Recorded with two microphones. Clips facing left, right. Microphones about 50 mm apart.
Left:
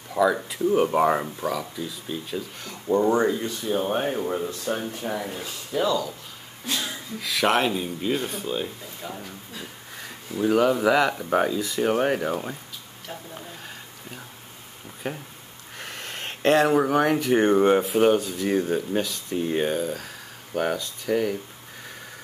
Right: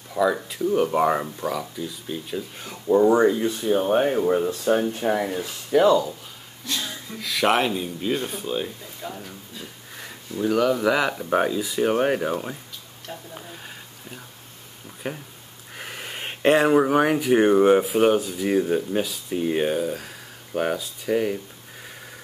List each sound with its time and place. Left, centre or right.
0.2 s speech: centre; by 5.3 s right
5.7 s speech: right
7.2 s speech: centre
10.3 s speech: centre
15.0 s speech: centre